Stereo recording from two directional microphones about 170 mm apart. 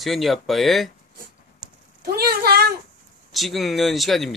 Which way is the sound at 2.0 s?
65° right (ahead or behind).